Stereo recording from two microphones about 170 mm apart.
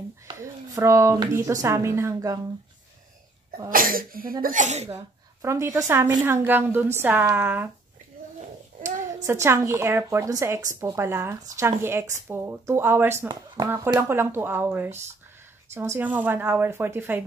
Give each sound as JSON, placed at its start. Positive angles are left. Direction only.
{"t": 0.3, "sound": "a woman's voice", "side_deg": -20}
{"t": 3.7, "sound": "speech", "side_deg": -55}
{"t": 5.4, "sound": "a woman's voice", "side_deg": -15}
{"t": 9.2, "sound": "a woman's voice", "side_deg": -15}